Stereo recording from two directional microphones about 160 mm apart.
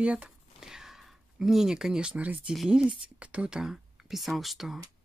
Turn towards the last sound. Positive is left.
turn(degrees=0)  # may be behind; listen again after turning